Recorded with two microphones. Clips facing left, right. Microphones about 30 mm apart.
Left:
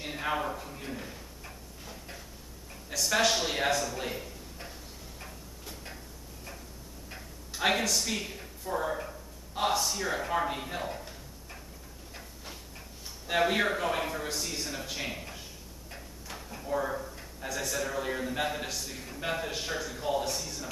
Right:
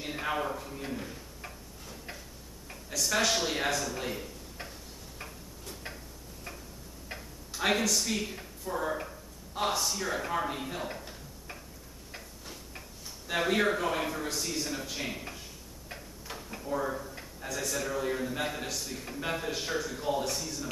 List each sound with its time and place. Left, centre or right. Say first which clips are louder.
0.2 s a man's voice: left 1 dB; centre
3.0 s a man's voice: left 1 dB; centre
4.6 s tick-tock: right 2 dB; right
7.1 s tick-tock: right 4 dB; right
7.5 s a man's voice: even; centre
13.3 s a man's voice: left 1 dB; centre
16.3 s a sound: right 1 dB; centre
16.6 s a man's voice: left 1 dB; centre